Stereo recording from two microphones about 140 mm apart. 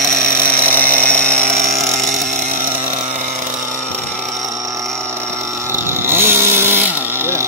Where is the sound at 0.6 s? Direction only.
10° left (ahead or behind).